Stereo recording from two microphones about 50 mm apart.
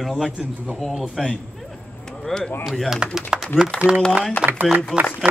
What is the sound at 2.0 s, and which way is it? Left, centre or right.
Chop, centre.